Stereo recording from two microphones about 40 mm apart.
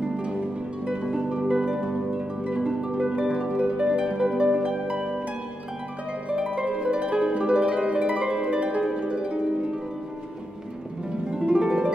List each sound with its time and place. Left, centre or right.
0.0 s music: right
1.5 s harp: centre
6.3 s harp: right
11.1 s music: centre